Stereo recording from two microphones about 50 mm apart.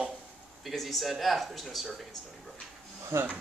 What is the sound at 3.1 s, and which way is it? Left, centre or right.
Speech, right.